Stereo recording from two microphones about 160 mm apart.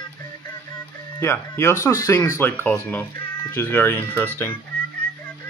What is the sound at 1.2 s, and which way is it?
Speech, 15° left (ahead or behind).